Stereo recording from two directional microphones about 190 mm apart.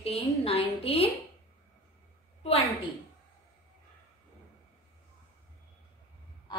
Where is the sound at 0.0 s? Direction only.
30° left (ahead or behind).